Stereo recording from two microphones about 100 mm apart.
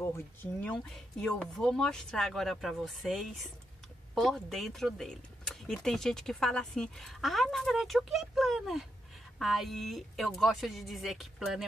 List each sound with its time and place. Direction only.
0.4 s speech: 20° left (ahead or behind); by 11.6 s centre (ahead or behind)